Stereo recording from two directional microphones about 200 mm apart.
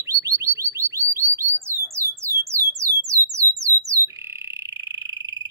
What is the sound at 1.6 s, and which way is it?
Music, 15° right (ahead or behind).